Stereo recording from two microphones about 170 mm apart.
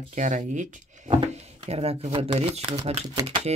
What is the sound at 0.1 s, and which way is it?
Speech, 45° right (ahead or behind).